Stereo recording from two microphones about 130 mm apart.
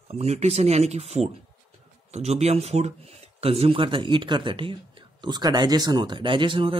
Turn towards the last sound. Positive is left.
turn(degrees=-40)  # may be behind; listen again after turning